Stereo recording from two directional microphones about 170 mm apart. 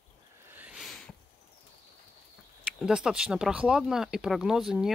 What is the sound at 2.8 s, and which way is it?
Speech, 5° right (ahead or behind).